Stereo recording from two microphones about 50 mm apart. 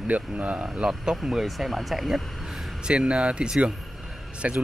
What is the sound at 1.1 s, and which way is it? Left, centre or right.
Speech, centre.